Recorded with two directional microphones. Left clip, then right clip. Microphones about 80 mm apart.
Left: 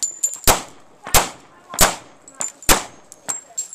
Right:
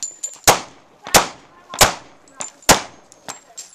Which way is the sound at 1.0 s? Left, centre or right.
Right.